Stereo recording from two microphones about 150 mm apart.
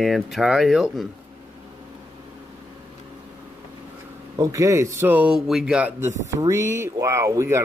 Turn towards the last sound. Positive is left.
turn(degrees=-20)  # may be behind; listen again after turning